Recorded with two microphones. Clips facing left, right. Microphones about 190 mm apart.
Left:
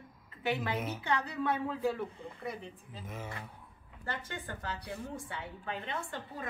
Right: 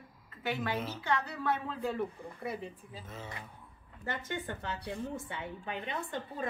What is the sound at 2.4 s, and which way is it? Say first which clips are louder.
Speech: right 3 dB; 5° right (ahead or behind).